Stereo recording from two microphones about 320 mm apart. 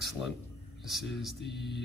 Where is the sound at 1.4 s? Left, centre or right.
Left.